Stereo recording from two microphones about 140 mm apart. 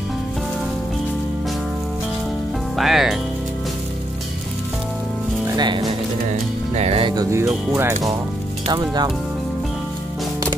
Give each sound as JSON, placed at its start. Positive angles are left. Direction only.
{"t": 2.7, "sound": "speech", "side_deg": 0}
{"t": 5.6, "sound": "speech", "side_deg": -30}
{"t": 6.7, "sound": "music", "side_deg": -45}
{"t": 7.2, "sound": "speech", "side_deg": -20}